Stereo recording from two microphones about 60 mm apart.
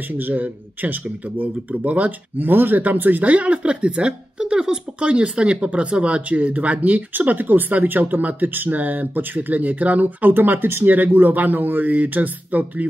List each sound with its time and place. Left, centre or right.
0.1 s speech: right